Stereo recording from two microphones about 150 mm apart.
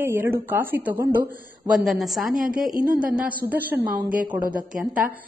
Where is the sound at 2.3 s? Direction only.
70° right (ahead or behind).